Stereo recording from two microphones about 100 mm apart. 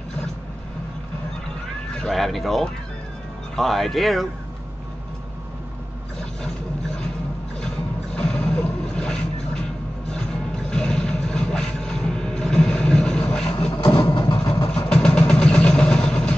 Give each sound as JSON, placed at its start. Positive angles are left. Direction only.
{"t": 2.0, "sound": "speech", "side_deg": 0}
{"t": 7.6, "sound": "boat", "side_deg": 10}
{"t": 13.9, "sound": "vehicle", "side_deg": 45}
{"t": 14.7, "sound": "vehicle", "side_deg": 10}